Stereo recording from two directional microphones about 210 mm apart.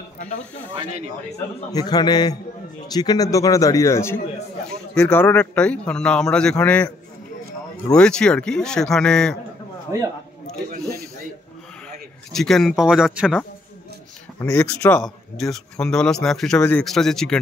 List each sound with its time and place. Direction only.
1.7 s a man's voice: 20° left (ahead or behind)
7.9 s speech: 5° left (ahead or behind)
9.9 s a man's voice: 15° right (ahead or behind)
12.3 s speech: centre (ahead or behind)
14.4 s a man's voice: 15° left (ahead or behind)